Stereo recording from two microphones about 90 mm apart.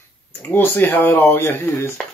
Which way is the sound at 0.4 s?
20° left (ahead or behind).